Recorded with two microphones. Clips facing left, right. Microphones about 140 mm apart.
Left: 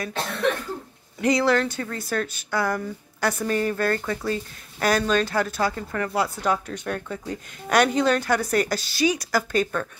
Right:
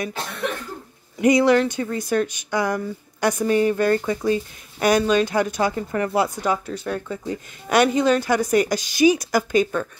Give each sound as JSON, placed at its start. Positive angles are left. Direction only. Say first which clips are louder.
{"t": 1.2, "sound": "speech", "louder": "right 5 dB", "side_deg": -20}
{"t": 9.5, "sound": "speech", "louder": "right 4 dB", "side_deg": -10}